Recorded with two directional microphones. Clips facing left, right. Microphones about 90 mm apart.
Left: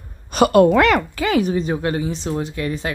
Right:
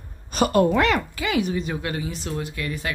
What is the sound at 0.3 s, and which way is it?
Speech, 75° left (ahead or behind).